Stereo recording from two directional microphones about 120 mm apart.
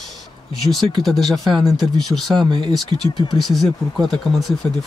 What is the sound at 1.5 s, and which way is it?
Speech, 40° right (ahead or behind).